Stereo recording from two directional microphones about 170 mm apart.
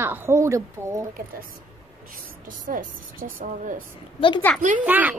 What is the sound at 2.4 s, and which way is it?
Speech, 50° right (ahead or behind).